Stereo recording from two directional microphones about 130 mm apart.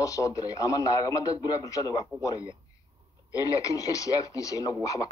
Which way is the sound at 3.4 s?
25° left (ahead or behind).